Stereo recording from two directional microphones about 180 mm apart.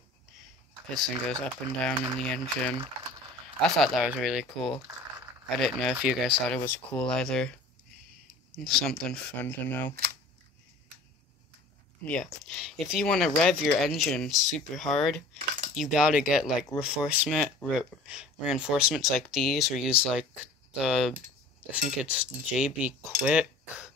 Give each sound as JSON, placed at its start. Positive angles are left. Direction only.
{"t": 0.8, "sound": "speech", "side_deg": 5}
{"t": 6.5, "sound": "speech", "side_deg": 10}
{"t": 8.5, "sound": "speech", "side_deg": 5}
{"t": 12.0, "sound": "speech", "side_deg": 5}